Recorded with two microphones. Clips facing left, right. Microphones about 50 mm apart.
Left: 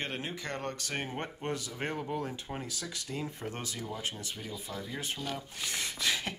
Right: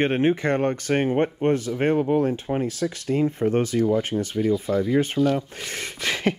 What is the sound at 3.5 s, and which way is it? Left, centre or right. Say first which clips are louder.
Speech: right 19 dB; right.